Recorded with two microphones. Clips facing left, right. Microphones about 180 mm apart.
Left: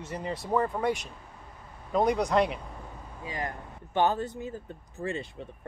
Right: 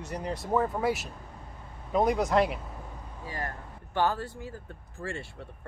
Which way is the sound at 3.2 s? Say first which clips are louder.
Left 2 dB; 15° left (ahead or behind).